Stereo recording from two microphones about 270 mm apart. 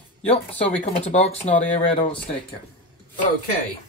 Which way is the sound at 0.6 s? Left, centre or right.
Left.